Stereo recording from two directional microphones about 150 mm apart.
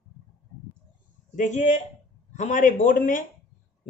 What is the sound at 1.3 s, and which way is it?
Speech, 55° left (ahead or behind).